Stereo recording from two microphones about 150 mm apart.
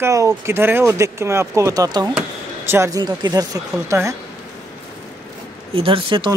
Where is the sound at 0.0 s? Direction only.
20° right (ahead or behind).